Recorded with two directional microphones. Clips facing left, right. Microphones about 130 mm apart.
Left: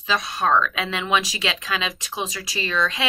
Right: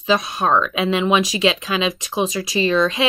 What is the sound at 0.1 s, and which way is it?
Speech, 20° right (ahead or behind).